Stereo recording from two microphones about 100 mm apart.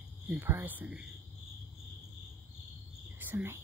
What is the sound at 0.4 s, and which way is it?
Speech, 20° right (ahead or behind).